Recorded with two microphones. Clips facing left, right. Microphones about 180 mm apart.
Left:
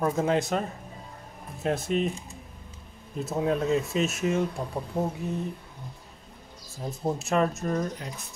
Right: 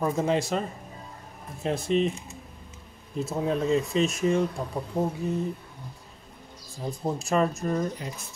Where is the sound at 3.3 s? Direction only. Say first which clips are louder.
Even; 5° left (ahead or behind).